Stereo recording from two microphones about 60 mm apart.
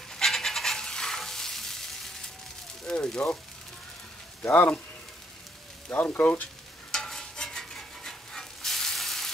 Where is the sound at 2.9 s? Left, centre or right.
Centre.